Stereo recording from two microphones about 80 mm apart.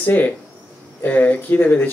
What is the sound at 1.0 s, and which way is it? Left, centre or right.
Speech, left.